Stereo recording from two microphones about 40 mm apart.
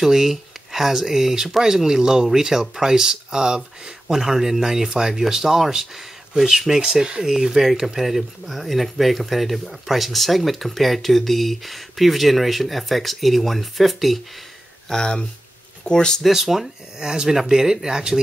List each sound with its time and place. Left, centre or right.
0.0 s speech: centre
14.9 s speech: centre
16.2 s speech: centre
17.0 s speech: centre